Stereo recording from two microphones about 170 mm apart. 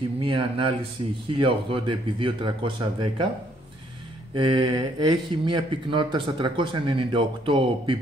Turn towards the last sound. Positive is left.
turn(degrees=-30)  # may be behind; listen again after turning